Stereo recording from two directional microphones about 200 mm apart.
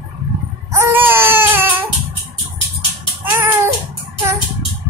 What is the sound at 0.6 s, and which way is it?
Baby cry, 10° right (ahead or behind).